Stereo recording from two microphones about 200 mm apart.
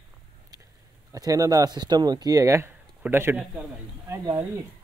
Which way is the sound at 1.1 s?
15° right (ahead or behind).